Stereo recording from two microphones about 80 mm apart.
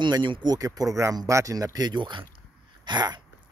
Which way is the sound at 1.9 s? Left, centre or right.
Right.